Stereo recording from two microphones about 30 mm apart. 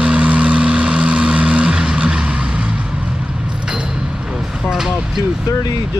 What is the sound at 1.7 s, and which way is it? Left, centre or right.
Vehicle, right.